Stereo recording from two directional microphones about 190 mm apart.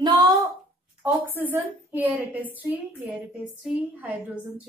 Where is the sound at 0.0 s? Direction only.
20° right (ahead or behind).